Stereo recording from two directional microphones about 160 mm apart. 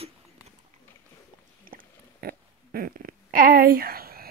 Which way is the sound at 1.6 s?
60° right (ahead or behind).